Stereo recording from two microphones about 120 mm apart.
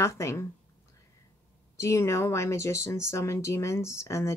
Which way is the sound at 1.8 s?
25° left (ahead or behind).